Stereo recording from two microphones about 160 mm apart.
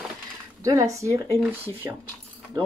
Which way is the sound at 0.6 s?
20° right (ahead or behind).